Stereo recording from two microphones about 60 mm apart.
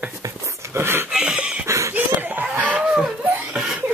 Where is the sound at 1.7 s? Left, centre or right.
Right.